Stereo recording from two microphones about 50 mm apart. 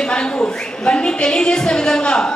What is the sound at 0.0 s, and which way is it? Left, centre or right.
A woman's voice, centre.